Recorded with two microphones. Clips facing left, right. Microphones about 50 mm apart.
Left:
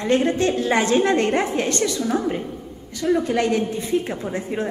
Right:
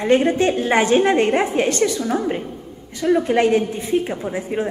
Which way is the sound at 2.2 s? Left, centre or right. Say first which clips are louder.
Right 1 dB; right.